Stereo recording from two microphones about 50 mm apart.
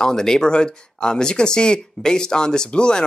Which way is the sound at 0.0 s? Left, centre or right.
Centre.